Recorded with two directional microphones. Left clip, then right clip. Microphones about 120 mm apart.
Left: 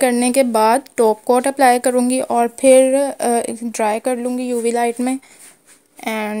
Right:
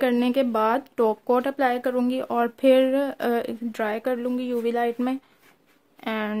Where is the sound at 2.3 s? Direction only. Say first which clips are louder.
Left 8 dB; 25° left (ahead or behind).